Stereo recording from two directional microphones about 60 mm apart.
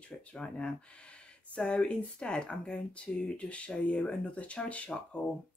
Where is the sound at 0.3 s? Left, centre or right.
Centre.